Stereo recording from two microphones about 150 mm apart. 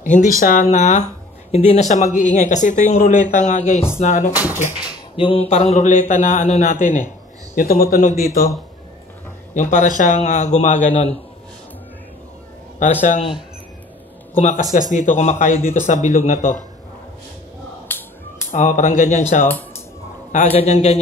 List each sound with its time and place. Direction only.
0.0 s a man's voice: 60° left (ahead or behind)
4.3 s speech: 10° right (ahead or behind)
5.3 s a man's voice: 45° left (ahead or behind)
7.5 s speech: 70° left (ahead or behind)
9.5 s a man's voice: 55° left (ahead or behind)
12.7 s speech: 55° left (ahead or behind)
14.3 s a man's voice: 55° left (ahead or behind)
17.8 s finger snapping: 15° left (ahead or behind)
18.5 s speech: 55° left (ahead or behind)
20.3 s a man's voice: 45° left (ahead or behind)